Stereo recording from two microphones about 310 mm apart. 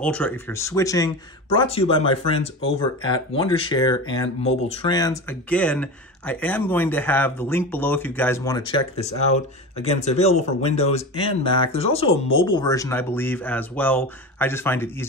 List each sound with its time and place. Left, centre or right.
0.0 s speech: centre